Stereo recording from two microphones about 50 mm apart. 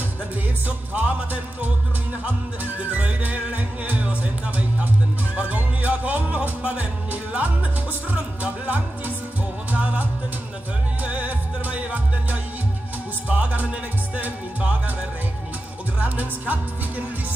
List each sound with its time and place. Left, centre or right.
0.7 s music: right
16.0 s music: right